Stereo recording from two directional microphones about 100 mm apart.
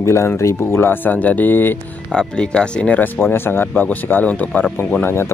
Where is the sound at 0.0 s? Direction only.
30° left (ahead or behind).